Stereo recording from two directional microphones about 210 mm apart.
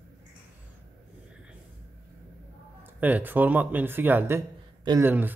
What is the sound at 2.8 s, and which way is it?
Speech, 10° right (ahead or behind).